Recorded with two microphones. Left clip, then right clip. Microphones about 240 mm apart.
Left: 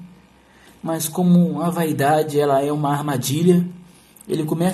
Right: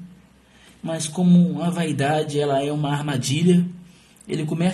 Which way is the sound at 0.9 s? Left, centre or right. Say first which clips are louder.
Left 1 dB; centre.